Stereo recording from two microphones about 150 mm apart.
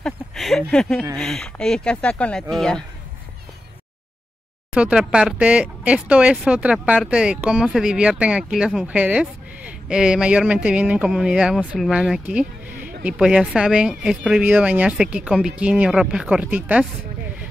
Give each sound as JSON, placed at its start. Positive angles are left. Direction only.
{"t": 0.0, "sound": "speech", "side_deg": 0}
{"t": 4.7, "sound": "speech", "side_deg": -5}